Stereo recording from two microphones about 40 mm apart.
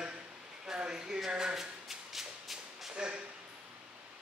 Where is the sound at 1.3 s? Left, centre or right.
Centre.